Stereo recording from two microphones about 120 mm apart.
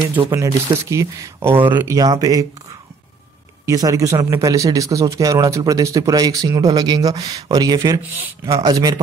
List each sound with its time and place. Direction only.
0.3 s speech: 25° right (ahead or behind)
2.0 s speech: 30° right (ahead or behind)
3.6 s speech: 30° right (ahead or behind)